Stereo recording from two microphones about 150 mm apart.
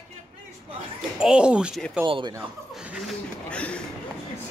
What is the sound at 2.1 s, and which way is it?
Speech, 35° right (ahead or behind).